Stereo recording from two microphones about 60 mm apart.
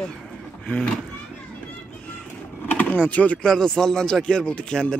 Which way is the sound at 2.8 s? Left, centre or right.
Left.